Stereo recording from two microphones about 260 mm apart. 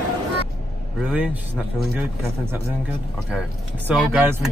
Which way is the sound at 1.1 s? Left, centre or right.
Centre.